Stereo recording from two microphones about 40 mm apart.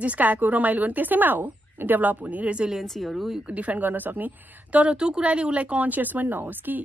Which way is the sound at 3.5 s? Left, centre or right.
Right.